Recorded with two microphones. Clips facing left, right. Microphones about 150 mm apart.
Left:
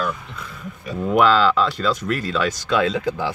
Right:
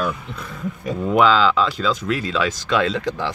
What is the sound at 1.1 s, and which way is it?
Speech, centre (ahead or behind).